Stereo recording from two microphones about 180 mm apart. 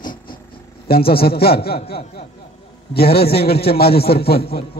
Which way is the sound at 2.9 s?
60° left (ahead or behind).